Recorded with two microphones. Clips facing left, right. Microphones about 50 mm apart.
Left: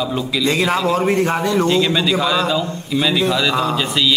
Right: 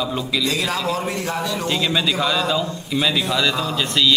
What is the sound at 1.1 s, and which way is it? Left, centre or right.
Speech, left.